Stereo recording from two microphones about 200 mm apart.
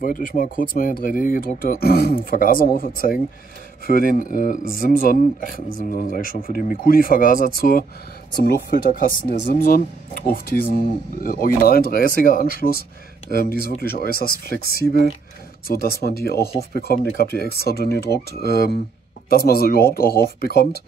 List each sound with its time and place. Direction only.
0.0 s speech: 45° left (ahead or behind)